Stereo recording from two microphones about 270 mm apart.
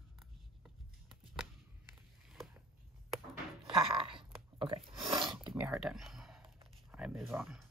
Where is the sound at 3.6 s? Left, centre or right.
Centre.